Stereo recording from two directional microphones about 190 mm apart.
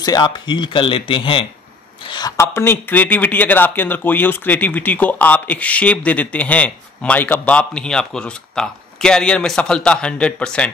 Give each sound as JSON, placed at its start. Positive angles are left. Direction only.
{"t": 0.0, "sound": "speech", "side_deg": 20}